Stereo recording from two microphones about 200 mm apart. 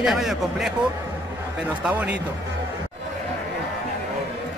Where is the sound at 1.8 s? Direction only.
10° right (ahead or behind).